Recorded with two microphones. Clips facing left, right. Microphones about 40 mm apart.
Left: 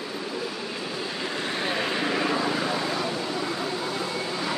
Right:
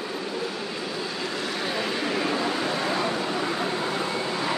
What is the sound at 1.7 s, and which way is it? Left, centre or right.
Vehicle, centre.